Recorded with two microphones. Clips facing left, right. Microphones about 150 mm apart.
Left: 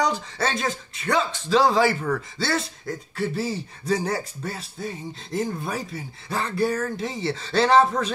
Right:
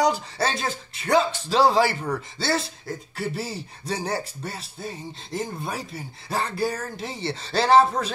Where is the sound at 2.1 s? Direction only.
30° right (ahead or behind).